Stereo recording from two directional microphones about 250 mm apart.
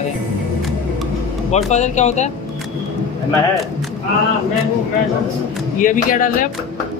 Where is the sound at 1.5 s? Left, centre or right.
Left.